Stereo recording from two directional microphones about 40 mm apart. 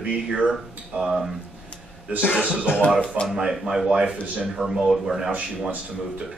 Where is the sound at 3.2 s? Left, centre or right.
Centre.